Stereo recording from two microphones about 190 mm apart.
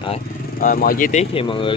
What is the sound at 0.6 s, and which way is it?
Speech, 45° left (ahead or behind).